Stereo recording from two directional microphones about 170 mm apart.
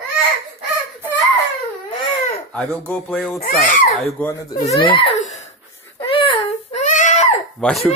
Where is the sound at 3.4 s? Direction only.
50° left (ahead or behind).